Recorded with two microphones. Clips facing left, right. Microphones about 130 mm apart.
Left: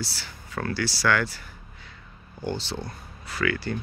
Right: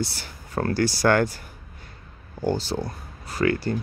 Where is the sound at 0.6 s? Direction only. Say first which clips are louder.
Right 6 dB; 45° right (ahead or behind).